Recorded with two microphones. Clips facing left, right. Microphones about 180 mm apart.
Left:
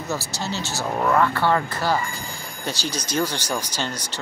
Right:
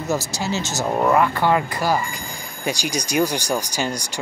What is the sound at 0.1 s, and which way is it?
Speech, 15° right (ahead or behind).